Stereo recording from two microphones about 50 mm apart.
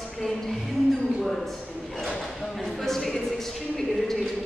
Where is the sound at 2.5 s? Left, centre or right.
Centre.